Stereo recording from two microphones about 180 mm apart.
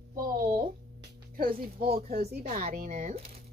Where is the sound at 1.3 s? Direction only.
55° right (ahead or behind).